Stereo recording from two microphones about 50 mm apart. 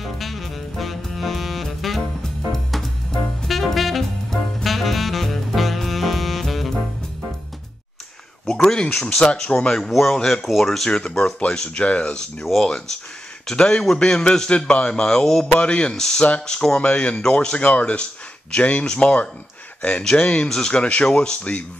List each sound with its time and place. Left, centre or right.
0.0 s saxophone: centre
2.5 s music: centre
4.6 s saxophone: centre
8.5 s a man's voice: centre
9.8 s speech: centre
10.1 s a man's voice: centre
10.4 s a man's voice: centre
15.6 s a man's voice: centre